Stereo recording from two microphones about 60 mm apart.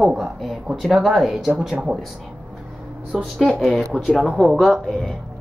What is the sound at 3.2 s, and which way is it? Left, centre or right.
Speech, centre.